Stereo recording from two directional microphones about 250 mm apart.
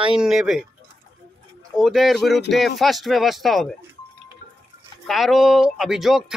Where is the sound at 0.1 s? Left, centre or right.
Centre.